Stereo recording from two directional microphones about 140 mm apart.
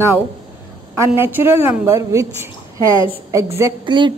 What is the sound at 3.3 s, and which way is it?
Speech, 20° right (ahead or behind).